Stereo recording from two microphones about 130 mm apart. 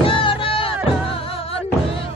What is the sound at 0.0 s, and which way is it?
Music, 40° left (ahead or behind).